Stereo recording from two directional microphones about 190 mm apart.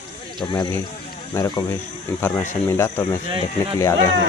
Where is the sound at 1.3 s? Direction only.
15° left (ahead or behind).